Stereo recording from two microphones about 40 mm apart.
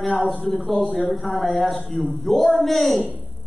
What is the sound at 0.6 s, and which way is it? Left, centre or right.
A man's voice, centre.